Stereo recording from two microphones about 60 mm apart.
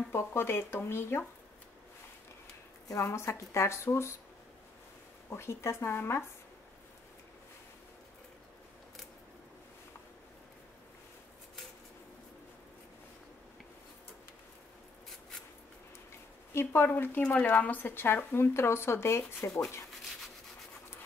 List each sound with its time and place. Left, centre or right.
0.1 s speech: left
3.1 s speech: left
5.3 s speech: left
16.5 s speech: left